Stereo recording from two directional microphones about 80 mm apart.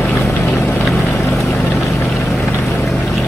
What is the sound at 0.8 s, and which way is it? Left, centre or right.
Boat, centre.